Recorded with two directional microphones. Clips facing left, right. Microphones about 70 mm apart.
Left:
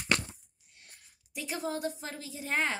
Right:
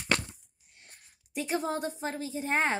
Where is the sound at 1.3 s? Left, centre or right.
Right.